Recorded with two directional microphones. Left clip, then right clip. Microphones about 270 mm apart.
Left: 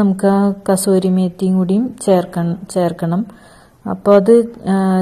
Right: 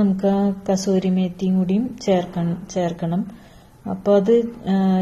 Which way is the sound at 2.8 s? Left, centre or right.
Left.